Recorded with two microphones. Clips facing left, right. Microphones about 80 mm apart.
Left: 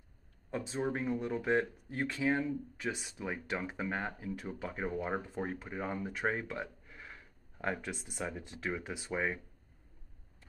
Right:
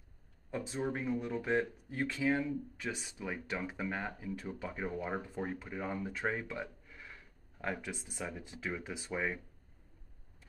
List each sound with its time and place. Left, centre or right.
0.5 s speech: centre
2.8 s speech: centre
8.8 s speech: centre